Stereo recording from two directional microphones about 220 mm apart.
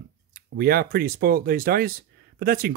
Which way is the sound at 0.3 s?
45° right (ahead or behind).